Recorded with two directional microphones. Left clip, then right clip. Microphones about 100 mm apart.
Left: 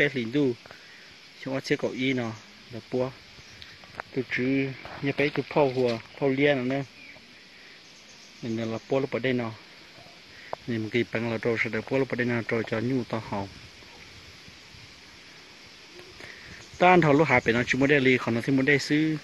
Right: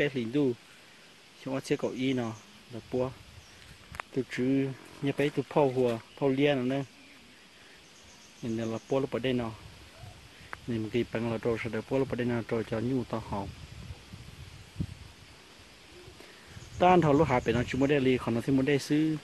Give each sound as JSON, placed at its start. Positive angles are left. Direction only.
{"t": 0.0, "sound": "speech", "side_deg": -5}
{"t": 4.1, "sound": "speech", "side_deg": -20}
{"t": 8.5, "sound": "speech", "side_deg": 0}
{"t": 10.7, "sound": "speech", "side_deg": -5}
{"t": 16.7, "sound": "speech", "side_deg": 0}